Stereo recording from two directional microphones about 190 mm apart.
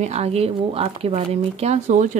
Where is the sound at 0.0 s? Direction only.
35° right (ahead or behind).